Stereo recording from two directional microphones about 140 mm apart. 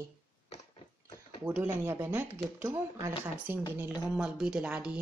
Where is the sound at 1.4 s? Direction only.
5° right (ahead or behind).